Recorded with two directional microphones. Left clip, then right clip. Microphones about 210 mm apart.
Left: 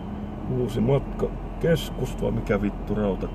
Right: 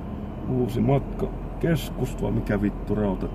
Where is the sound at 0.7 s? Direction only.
10° right (ahead or behind).